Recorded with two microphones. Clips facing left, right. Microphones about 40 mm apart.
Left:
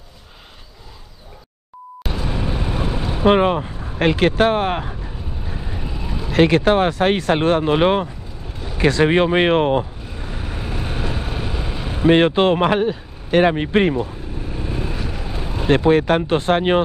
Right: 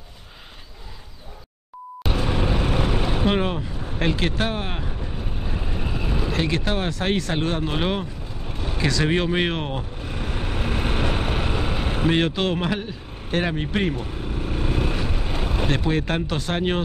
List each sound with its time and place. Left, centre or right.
2.1 s vehicle: right
3.0 s vehicle: right
3.3 s speech: left
3.8 s speech: left
5.7 s vehicle: centre
6.5 s speech: left
10.1 s vehicle: right
12.1 s speech: left
14.4 s vehicle: right
15.7 s speech: left